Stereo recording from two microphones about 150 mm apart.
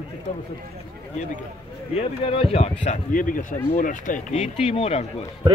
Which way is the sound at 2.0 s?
40° left (ahead or behind).